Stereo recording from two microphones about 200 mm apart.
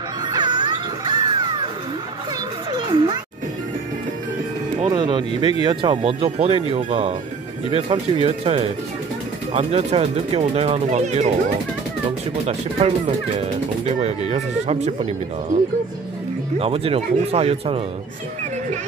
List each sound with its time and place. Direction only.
0.3 s music: 20° right (ahead or behind)
2.7 s music: 20° right (ahead or behind)
4.8 s speech: 20° right (ahead or behind)
5.3 s speech: 30° left (ahead or behind)
5.7 s speech: 25° right (ahead or behind)
12.4 s speech: 30° right (ahead or behind)
16.5 s speech: 30° right (ahead or behind)